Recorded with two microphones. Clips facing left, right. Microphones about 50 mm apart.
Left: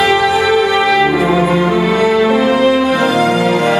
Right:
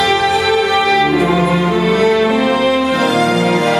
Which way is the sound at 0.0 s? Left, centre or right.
Centre.